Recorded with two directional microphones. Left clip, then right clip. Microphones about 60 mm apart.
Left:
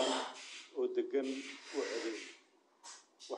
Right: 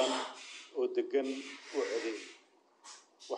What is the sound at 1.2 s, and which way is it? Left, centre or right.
Rub, centre.